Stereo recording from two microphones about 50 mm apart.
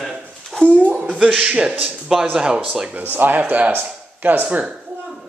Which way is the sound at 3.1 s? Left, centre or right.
Right.